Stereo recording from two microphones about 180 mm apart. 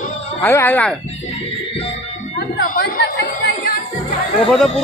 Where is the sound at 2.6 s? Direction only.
65° left (ahead or behind).